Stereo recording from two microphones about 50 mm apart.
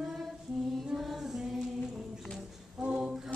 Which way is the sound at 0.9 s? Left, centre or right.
Centre.